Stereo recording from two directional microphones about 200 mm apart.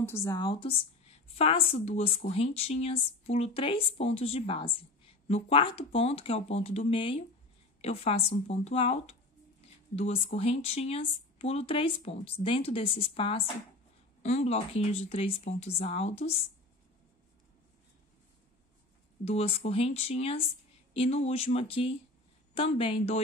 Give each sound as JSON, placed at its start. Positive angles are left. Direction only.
{"t": 0.0, "sound": "a woman's voice", "side_deg": 15}
{"t": 19.2, "sound": "a woman's voice", "side_deg": 30}